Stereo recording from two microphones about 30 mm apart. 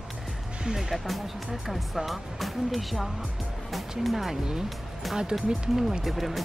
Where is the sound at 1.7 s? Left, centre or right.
Centre.